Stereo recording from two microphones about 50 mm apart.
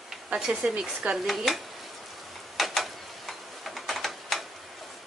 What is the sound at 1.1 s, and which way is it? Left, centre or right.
Speech, centre.